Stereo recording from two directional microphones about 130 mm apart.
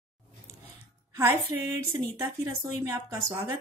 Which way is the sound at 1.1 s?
25° right (ahead or behind).